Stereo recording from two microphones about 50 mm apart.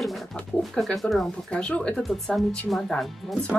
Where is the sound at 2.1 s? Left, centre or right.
Centre.